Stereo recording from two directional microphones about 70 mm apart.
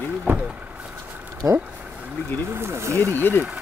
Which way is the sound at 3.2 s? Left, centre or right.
Left.